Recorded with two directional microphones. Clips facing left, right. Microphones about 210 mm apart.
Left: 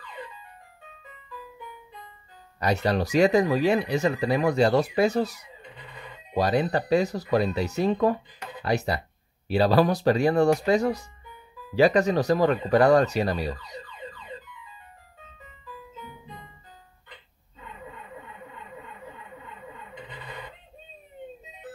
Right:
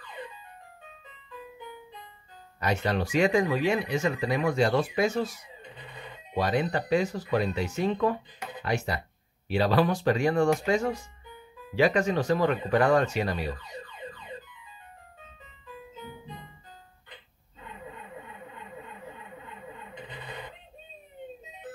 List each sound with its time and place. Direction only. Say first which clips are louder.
2.6 s speech: left 3 dB; 35° left (ahead or behind)